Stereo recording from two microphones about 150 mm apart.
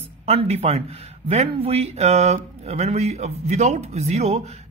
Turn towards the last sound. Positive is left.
turn(degrees=-45)  # may be behind; listen again after turning